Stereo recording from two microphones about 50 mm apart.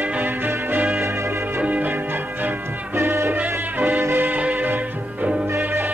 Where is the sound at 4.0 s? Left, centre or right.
Right.